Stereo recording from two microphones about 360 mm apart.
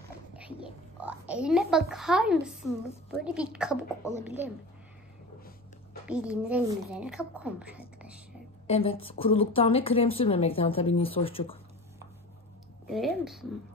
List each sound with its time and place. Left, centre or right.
0.4 s a sound: centre
3.1 s a woman's voice: centre
6.0 s a woman's voice: centre
8.6 s a woman's voice: centre
12.8 s a woman's voice: centre